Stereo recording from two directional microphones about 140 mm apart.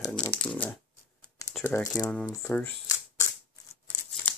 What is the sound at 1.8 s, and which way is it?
Speech, 30° left (ahead or behind).